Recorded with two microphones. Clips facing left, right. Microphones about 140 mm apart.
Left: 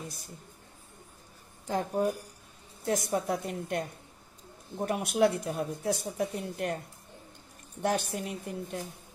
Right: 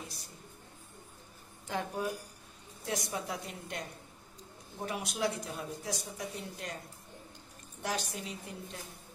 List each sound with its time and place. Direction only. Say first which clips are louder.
1.7 s a woman's voice: left 6 dB; 40° left (ahead or behind)
7.8 s speech: left 7 dB; 55° left (ahead or behind)